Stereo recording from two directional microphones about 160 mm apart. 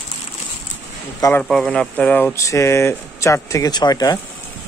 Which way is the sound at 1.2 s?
15° left (ahead or behind).